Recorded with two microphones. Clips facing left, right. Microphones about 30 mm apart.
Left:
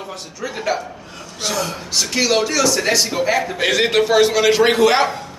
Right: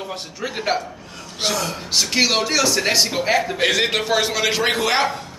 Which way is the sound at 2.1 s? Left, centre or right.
Centre.